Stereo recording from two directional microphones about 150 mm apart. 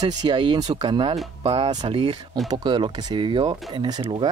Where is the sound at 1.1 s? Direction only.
40° right (ahead or behind).